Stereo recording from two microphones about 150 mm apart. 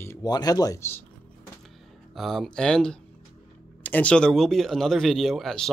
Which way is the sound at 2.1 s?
Centre (ahead or behind).